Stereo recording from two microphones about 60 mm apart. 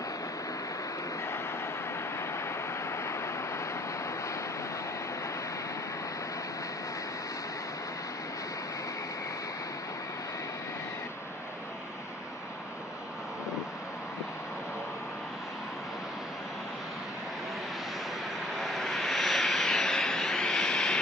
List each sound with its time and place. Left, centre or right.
2.1 s vehicle: left
18.6 s vehicle: centre